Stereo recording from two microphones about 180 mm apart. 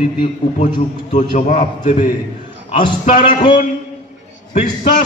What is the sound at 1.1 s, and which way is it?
Speech, 45° left (ahead or behind).